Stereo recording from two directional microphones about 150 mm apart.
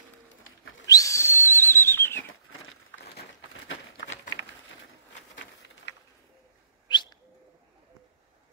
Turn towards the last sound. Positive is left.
turn(degrees=30)  # may be behind; listen again after turning